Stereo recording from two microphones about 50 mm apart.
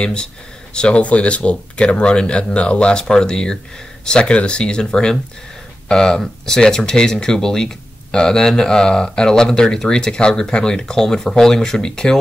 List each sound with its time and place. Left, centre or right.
0.0 s speech: centre